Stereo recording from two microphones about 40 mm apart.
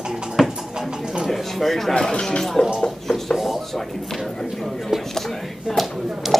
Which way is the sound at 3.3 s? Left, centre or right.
Centre.